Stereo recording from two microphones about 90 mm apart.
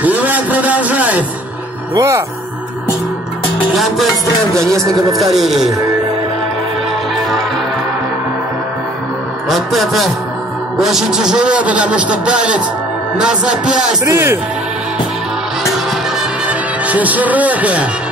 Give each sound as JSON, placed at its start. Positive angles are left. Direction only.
{"t": 0.0, "sound": "vehicle", "side_deg": -20}
{"t": 2.0, "sound": "speech", "side_deg": -35}
{"t": 3.7, "sound": "speech", "side_deg": 0}
{"t": 4.6, "sound": "speech", "side_deg": -35}
{"t": 4.9, "sound": "speech", "side_deg": 0}
{"t": 9.5, "sound": "a man's voice", "side_deg": 0}
{"t": 14.0, "sound": "speech", "side_deg": -30}
{"t": 16.2, "sound": "music", "side_deg": -15}